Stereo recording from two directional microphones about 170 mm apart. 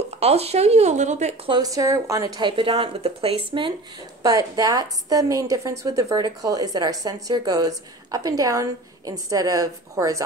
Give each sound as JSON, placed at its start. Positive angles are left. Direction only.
{"t": 0.2, "sound": "speech", "side_deg": -40}
{"t": 1.5, "sound": "a woman's voice", "side_deg": -20}
{"t": 4.2, "sound": "a woman's voice", "side_deg": -20}